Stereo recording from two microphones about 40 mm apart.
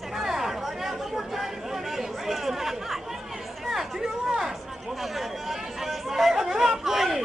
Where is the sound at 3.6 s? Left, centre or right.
Centre.